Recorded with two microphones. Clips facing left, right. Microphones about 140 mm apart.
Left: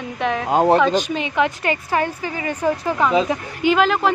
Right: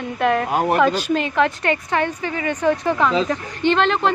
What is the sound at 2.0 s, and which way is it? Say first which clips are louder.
Speech: right 1 dB; 30° left (ahead or behind).